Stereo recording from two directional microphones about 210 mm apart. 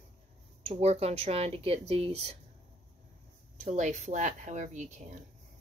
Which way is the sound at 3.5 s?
35° right (ahead or behind).